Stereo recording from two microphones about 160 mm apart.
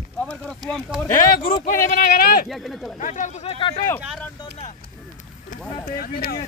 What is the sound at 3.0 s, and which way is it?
Speech, 50° left (ahead or behind).